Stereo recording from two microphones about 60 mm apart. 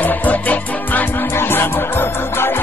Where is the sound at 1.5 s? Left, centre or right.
Left.